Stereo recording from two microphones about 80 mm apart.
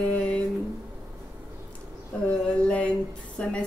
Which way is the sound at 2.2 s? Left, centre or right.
Centre.